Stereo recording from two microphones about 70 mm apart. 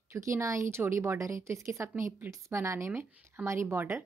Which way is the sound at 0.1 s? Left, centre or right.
Right.